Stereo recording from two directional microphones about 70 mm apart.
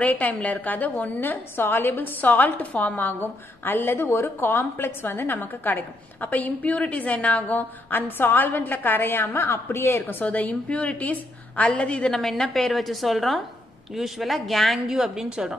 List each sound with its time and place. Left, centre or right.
0.0 s a woman's voice: left
12.1 s speech: centre